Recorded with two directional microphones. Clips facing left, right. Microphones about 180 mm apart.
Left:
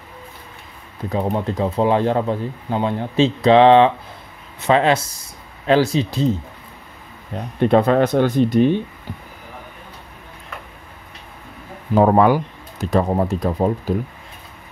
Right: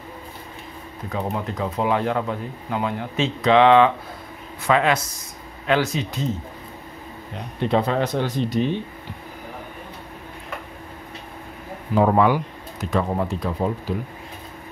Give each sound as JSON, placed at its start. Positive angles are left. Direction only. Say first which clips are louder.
{"t": 1.1, "sound": "speech", "louder": "left 5 dB", "side_deg": 30}
{"t": 7.3, "sound": "speech", "louder": "left 6 dB", "side_deg": 55}
{"t": 11.9, "sound": "speech", "louder": "left 4 dB", "side_deg": 40}